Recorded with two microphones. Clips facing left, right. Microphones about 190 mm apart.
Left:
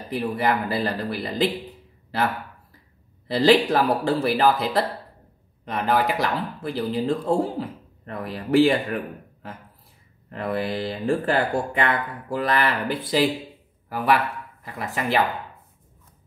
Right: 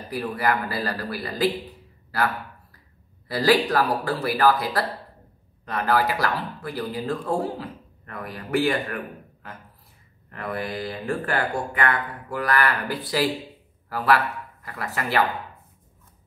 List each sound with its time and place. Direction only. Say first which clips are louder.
0.1 s speech: left 2 dB; 25° left (ahead or behind)
3.3 s a man's voice: left 3 dB; 25° left (ahead or behind)